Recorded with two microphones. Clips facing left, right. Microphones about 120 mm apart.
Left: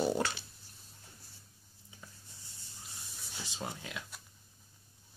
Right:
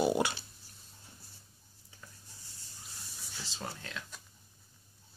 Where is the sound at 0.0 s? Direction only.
15° right (ahead or behind).